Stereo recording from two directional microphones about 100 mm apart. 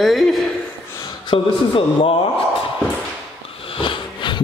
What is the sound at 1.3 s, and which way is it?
Speech, 60° left (ahead or behind).